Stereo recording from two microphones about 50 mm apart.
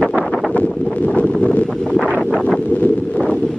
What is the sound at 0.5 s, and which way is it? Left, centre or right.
Wind noise, left.